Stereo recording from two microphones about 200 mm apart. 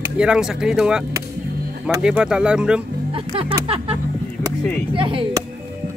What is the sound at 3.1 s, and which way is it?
Music, 30° right (ahead or behind).